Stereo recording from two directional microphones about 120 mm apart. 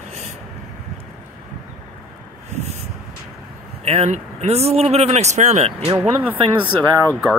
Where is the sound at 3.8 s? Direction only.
60° right (ahead or behind).